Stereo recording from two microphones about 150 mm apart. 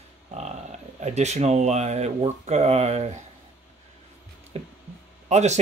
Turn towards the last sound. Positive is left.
turn(degrees=-50)  # may be behind; listen again after turning